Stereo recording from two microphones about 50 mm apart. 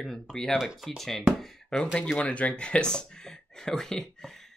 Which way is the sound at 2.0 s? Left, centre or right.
Left.